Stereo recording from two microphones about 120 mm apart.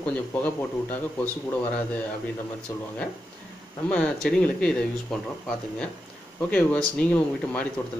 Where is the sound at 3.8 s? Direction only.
10° left (ahead or behind).